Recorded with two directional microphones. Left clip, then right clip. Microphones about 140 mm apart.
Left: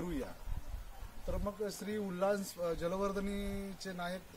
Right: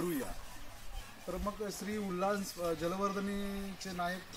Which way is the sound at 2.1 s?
20° left (ahead or behind).